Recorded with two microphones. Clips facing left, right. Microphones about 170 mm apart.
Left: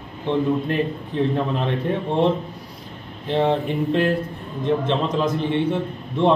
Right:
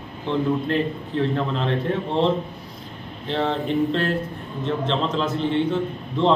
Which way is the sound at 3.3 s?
15° left (ahead or behind).